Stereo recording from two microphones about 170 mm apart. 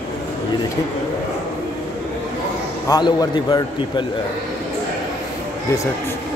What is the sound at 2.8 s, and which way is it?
A man's voice, 20° left (ahead or behind).